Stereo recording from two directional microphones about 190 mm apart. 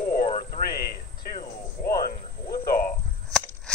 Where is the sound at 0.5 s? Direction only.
55° left (ahead or behind).